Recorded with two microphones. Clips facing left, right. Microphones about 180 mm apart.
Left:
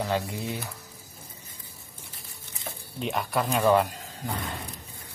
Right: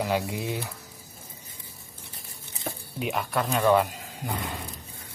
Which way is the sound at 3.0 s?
Centre (ahead or behind).